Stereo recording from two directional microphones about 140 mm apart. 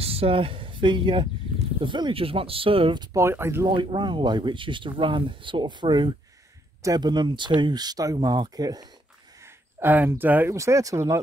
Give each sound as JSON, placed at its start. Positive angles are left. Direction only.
{"t": 0.0, "sound": "speech", "side_deg": -45}
{"t": 3.2, "sound": "speech", "side_deg": -20}
{"t": 3.6, "sound": "speech", "side_deg": -35}
{"t": 9.8, "sound": "speech", "side_deg": -15}